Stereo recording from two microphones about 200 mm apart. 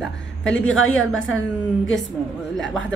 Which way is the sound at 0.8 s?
85° left.